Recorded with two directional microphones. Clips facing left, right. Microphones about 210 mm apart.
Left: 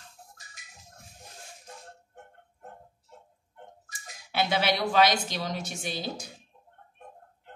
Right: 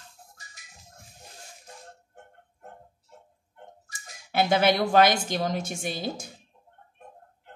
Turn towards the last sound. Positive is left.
turn(degrees=-50)  # may be behind; listen again after turning